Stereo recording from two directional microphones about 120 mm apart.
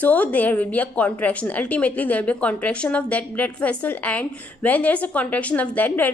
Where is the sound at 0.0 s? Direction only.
15° left (ahead or behind).